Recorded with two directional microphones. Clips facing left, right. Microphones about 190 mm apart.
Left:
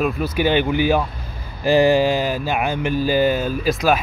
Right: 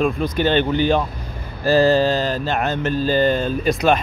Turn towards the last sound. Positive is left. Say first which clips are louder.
# right 1 dB
turn(degrees=5)  # may be behind; listen again after turning